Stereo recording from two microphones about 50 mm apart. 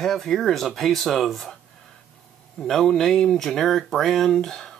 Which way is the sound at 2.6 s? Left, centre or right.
Centre.